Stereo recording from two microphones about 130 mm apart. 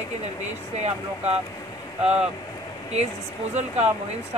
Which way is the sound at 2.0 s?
5° right (ahead or behind).